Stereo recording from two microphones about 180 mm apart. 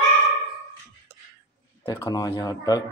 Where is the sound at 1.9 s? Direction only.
20° left (ahead or behind).